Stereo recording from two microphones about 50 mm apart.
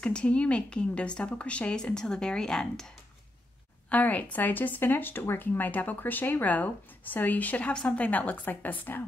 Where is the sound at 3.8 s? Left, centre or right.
Left.